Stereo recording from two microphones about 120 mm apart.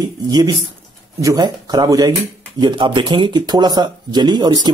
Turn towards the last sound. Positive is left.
turn(degrees=-35)  # may be behind; listen again after turning